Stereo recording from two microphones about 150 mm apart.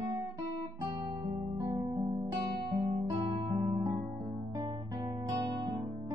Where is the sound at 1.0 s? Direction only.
25° right (ahead or behind).